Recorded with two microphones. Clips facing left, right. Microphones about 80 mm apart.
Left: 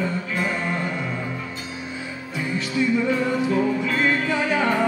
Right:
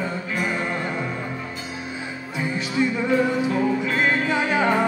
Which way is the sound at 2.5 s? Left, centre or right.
Centre.